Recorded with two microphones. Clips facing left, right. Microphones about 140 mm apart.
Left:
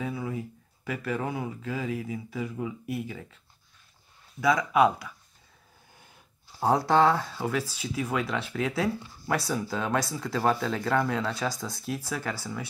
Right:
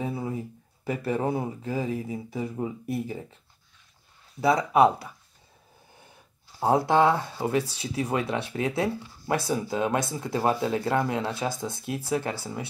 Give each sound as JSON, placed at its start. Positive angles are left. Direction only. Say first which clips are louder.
{"t": 0.0, "sound": "a sound", "louder": "right 2 dB", "side_deg": -30}
{"t": 0.8, "sound": "speech", "louder": "right 4 dB", "side_deg": -35}
{"t": 4.4, "sound": "speech", "louder": "right 2 dB", "side_deg": -30}
{"t": 6.6, "sound": "speech", "louder": "right 1 dB", "side_deg": -20}
{"t": 7.7, "sound": "speech", "louder": "right 2 dB", "side_deg": -35}